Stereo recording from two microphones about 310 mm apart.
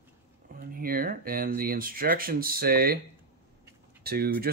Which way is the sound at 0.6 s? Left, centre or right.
Right.